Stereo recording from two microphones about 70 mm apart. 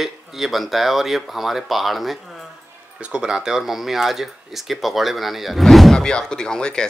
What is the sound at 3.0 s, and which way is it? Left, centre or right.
Speech, centre.